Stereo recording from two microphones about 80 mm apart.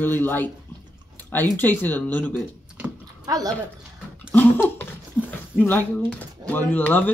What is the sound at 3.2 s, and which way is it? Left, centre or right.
Speech, right.